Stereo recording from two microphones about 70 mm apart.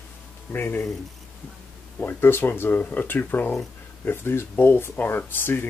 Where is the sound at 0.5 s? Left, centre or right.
Left.